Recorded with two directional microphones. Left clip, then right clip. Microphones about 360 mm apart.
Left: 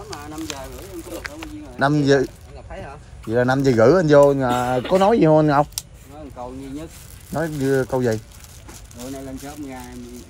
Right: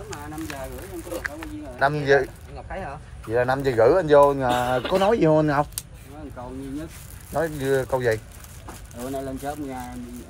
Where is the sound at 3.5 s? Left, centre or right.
Left.